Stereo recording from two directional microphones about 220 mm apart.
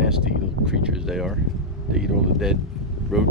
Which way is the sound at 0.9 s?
Centre (ahead or behind).